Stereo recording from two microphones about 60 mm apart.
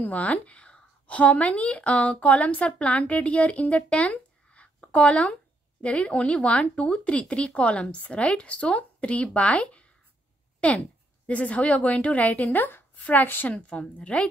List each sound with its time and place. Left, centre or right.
0.0 s speech: left